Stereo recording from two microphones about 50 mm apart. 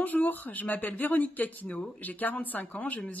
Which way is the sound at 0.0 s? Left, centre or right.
Left.